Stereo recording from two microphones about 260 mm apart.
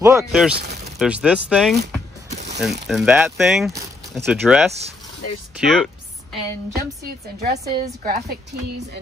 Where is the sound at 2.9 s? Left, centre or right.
Centre.